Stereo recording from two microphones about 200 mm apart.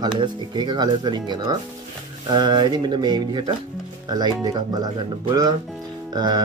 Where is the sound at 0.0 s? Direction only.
20° right (ahead or behind).